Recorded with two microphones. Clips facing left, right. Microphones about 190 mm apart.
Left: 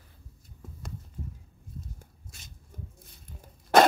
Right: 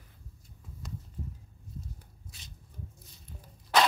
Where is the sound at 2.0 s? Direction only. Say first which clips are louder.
Left 2 dB; 50° left (ahead or behind).